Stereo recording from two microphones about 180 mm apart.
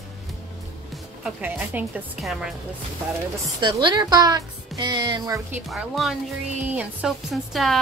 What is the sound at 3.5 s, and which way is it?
Speech, 25° right (ahead or behind).